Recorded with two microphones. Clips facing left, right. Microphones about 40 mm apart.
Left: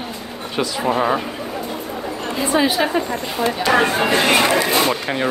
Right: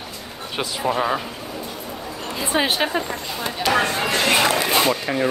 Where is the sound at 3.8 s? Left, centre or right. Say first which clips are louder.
Left 4 dB; left.